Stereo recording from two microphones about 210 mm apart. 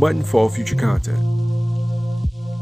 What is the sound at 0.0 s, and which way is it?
Music, centre (ahead or behind).